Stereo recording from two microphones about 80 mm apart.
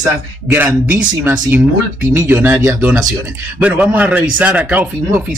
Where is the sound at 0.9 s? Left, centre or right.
Right.